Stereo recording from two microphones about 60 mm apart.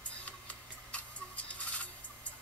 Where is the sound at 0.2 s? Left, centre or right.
Left.